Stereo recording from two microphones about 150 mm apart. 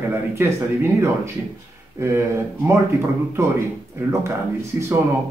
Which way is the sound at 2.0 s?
20° right (ahead or behind).